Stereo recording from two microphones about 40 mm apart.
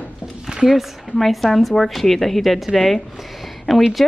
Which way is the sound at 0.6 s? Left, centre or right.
Centre.